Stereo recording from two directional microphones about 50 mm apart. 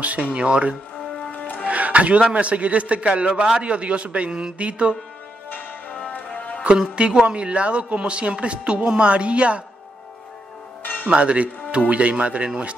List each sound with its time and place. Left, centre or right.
0.0 s a man's voice: right
5.5 s music: left
7.0 s speech: centre
10.8 s music: left
11.1 s speech: right